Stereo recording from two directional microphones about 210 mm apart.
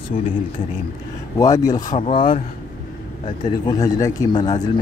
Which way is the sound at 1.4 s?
15° left (ahead or behind).